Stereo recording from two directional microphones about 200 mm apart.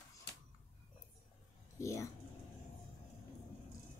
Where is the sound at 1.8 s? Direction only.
15° left (ahead or behind).